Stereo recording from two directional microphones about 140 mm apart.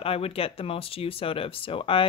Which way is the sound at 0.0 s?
45° left (ahead or behind).